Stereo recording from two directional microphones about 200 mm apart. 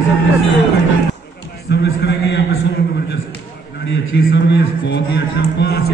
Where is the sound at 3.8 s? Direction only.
70° left (ahead or behind).